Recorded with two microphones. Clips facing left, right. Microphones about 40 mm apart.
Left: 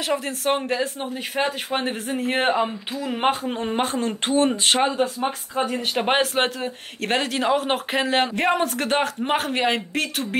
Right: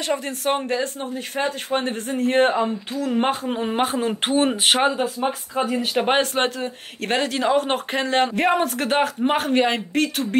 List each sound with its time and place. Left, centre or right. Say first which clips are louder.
0.1 s speech: even; centre
3.3 s speech: even; centre